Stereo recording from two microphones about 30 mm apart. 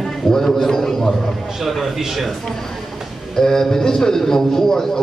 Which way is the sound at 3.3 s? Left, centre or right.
Centre.